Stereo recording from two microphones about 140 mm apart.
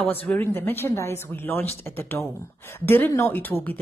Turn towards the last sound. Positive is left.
turn(degrees=10)  # may be behind; listen again after turning